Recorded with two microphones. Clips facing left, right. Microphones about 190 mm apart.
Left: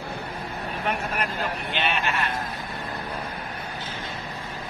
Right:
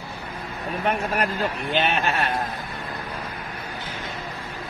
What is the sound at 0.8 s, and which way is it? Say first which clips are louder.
Speech: right 5 dB; 40° right (ahead or behind).